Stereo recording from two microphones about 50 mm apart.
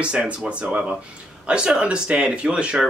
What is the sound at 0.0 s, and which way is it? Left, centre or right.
Speech, right.